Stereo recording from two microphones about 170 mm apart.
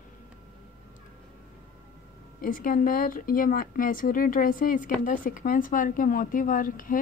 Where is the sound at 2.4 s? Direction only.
55° left (ahead or behind).